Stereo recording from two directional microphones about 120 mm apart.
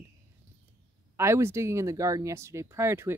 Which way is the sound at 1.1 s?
20° right (ahead or behind).